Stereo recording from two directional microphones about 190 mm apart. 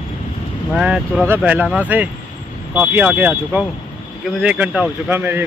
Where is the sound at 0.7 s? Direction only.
5° right (ahead or behind).